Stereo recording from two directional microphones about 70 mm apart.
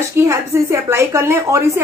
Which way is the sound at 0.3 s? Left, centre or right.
Right.